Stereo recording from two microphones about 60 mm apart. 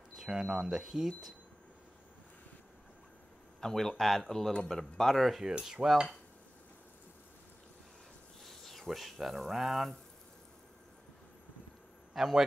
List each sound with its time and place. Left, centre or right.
0.1 s speech: centre
3.6 s speech: centre
5.5 s cutlery: centre
8.5 s speech: centre
12.1 s a man's voice: centre